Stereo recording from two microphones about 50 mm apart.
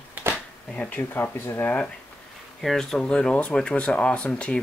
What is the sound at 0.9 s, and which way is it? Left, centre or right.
Speech, left.